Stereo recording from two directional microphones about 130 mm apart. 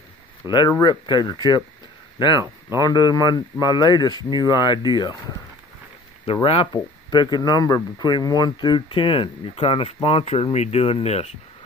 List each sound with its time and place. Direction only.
0.7 s speech: 30° left (ahead or behind)
2.8 s speech: 30° left (ahead or behind)
6.2 s speech: 45° left (ahead or behind)